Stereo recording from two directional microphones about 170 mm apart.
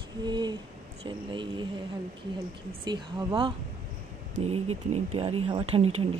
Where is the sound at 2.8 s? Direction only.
25° right (ahead or behind).